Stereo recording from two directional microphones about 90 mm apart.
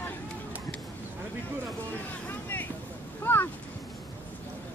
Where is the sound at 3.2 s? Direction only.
25° left (ahead or behind).